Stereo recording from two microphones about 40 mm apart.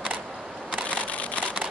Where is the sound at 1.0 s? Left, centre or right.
Left.